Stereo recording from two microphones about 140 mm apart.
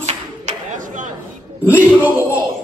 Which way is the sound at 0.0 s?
55° right (ahead or behind).